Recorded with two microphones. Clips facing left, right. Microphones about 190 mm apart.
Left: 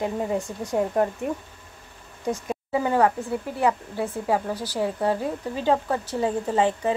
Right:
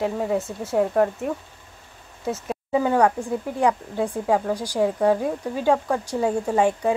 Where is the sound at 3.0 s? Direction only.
15° right (ahead or behind).